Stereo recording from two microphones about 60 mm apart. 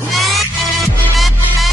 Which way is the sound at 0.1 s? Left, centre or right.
Centre.